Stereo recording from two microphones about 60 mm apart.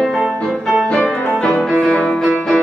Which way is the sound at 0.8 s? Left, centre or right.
Centre.